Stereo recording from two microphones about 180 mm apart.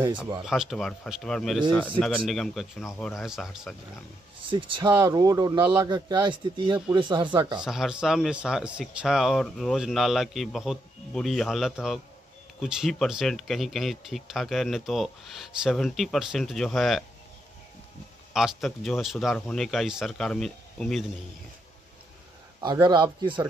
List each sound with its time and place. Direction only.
0.5 s speech: centre (ahead or behind)
4.5 s speech: 30° right (ahead or behind)
7.6 s speech: 5° right (ahead or behind)
18.3 s speech: centre (ahead or behind)
22.6 s speech: 25° right (ahead or behind)